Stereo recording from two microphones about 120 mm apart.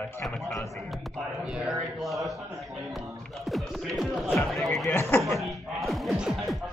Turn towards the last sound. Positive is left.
turn(degrees=0)  # may be behind; listen again after turning